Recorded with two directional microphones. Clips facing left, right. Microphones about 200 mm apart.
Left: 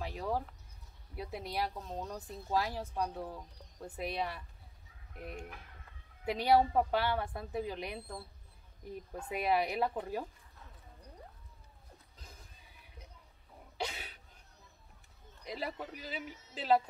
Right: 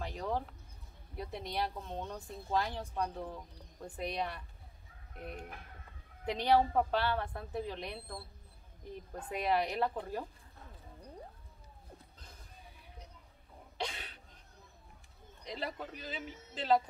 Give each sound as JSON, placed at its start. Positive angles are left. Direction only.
{"t": 0.0, "sound": "speech", "side_deg": 5}
{"t": 6.2, "sound": "a woman's voice", "side_deg": 10}
{"t": 13.7, "sound": "cough", "side_deg": 10}
{"t": 15.4, "sound": "a woman's voice", "side_deg": 5}